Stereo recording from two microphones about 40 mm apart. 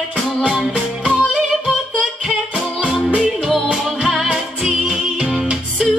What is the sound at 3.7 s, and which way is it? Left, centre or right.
Music, centre.